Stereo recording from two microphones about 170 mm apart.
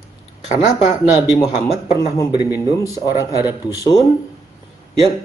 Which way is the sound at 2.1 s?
25° left (ahead or behind).